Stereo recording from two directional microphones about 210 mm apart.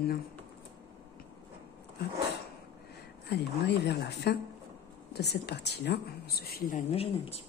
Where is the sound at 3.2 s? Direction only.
50° left (ahead or behind).